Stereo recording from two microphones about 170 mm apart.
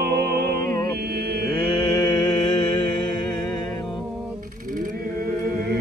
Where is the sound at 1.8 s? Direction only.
25° left (ahead or behind).